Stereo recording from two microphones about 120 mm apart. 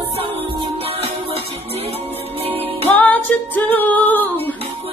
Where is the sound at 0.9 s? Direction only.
60° right (ahead or behind).